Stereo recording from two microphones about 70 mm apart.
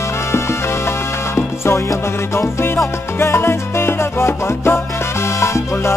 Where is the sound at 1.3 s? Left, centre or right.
Left.